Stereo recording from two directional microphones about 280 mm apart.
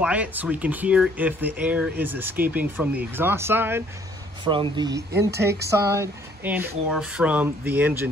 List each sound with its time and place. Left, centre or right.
0.0 s speech: centre